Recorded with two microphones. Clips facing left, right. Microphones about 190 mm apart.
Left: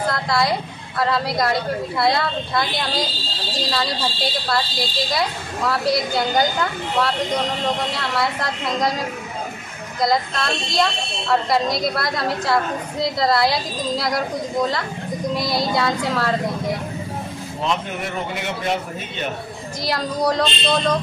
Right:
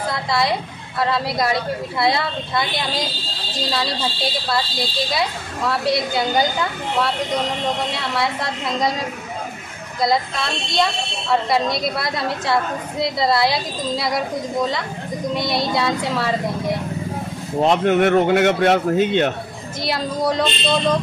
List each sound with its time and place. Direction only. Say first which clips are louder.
0.1 s speech: right 2 dB; centre (ahead or behind)
10.0 s speech: even; centre (ahead or behind)
17.8 s speech: right 12 dB; 75° right (ahead or behind)
19.8 s speech: even; centre (ahead or behind)